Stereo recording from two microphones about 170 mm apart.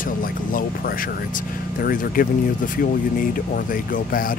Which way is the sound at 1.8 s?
55° left (ahead or behind).